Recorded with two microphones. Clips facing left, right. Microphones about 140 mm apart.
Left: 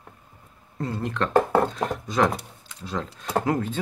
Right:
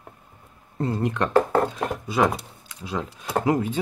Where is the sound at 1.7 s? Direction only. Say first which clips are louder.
Even; 10° right (ahead or behind).